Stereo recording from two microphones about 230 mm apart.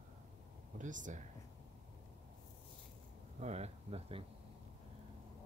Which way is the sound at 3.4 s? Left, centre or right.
Right.